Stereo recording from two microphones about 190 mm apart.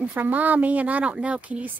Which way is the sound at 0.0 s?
10° right (ahead or behind).